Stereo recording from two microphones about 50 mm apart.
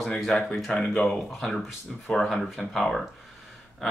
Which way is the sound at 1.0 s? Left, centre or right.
Centre.